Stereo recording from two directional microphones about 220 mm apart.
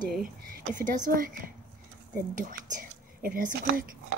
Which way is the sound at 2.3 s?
35° right (ahead or behind).